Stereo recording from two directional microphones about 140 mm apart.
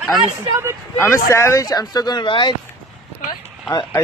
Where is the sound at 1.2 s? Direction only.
20° left (ahead or behind).